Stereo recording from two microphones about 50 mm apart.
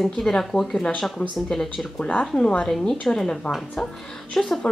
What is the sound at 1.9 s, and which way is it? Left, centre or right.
Speech, left.